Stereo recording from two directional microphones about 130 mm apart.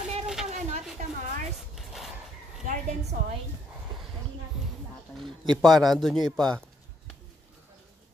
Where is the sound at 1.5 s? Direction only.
Centre (ahead or behind).